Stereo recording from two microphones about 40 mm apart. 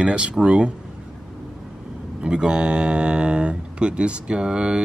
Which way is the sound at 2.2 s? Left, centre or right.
Right.